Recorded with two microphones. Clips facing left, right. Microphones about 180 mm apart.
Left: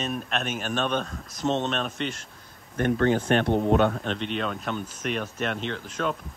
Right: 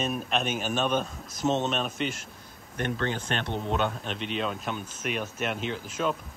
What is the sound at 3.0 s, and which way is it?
Speech, 40° left (ahead or behind).